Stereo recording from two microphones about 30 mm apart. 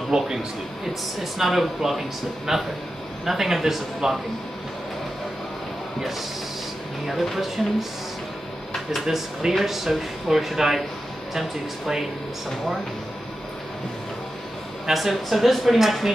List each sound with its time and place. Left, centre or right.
0.1 s a man's voice: right
1.4 s speech: centre
7.1 s speech: centre
9.0 s speech: centre
14.9 s speech: centre